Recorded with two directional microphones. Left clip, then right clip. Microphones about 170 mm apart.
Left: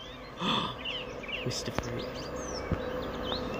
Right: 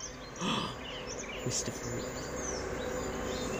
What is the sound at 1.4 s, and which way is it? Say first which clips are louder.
Speech: even; 5° left (ahead or behind).